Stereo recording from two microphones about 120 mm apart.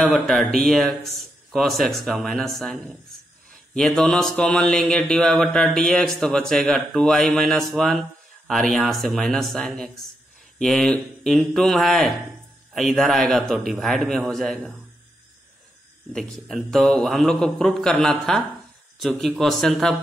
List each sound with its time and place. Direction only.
0.0 s a man's voice: centre (ahead or behind)
16.1 s a man's voice: 5° left (ahead or behind)